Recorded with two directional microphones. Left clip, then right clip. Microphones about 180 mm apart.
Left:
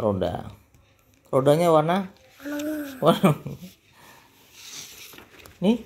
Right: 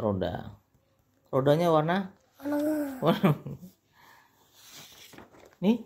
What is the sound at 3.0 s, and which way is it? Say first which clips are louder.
Speech: left 9 dB; 10° left (ahead or behind).